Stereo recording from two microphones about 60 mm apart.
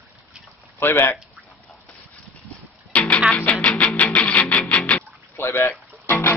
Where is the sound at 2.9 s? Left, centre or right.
Left.